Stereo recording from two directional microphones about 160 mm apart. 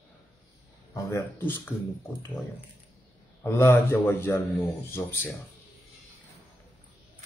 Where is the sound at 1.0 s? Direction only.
15° left (ahead or behind).